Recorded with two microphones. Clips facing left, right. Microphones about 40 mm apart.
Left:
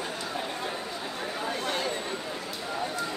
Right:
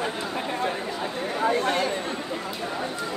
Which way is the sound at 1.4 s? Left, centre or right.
Right.